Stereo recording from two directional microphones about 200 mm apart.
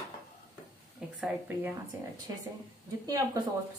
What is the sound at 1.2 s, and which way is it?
Speech, 10° right (ahead or behind).